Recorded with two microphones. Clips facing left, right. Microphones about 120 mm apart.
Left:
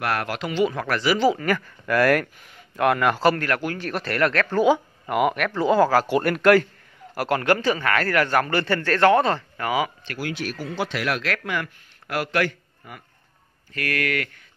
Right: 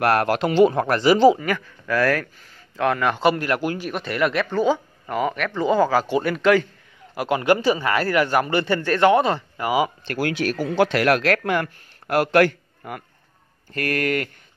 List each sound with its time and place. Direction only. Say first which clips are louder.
0.0 s speech: right 7 dB; 45° right (ahead or behind); by 1.4 s 20° right (ahead or behind)
1.4 s speech: left 1 dB; 5° left (ahead or behind)
3.4 s speech: right 2 dB; 20° right (ahead or behind)
3.8 s speech: even; centre (ahead or behind)
4.5 s speech: left 2 dB; 10° left (ahead or behind)
7.5 s speech: right 2 dB; 15° right (ahead or behind)
9.6 s speech: right 5 dB; 15° right (ahead or behind)
10.2 s a man's voice: right 6 dB; 60° right (ahead or behind)
13.7 s speech: right 3 dB; 40° right (ahead or behind)